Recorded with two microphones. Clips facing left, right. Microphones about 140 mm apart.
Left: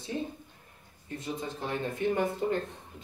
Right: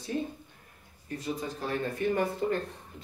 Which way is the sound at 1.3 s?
20° left (ahead or behind).